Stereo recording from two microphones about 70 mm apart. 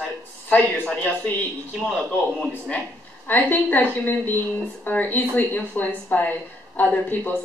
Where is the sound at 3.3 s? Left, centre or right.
Left.